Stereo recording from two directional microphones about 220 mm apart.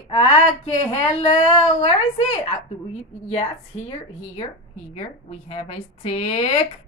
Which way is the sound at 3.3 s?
25° left (ahead or behind).